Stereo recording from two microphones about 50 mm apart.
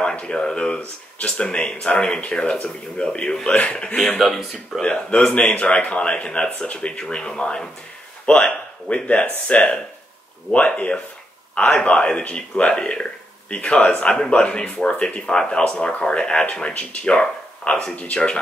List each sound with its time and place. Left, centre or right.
0.0 s a man's voice: left
4.2 s speech: centre
4.8 s a man's voice: left
8.8 s a man's voice: left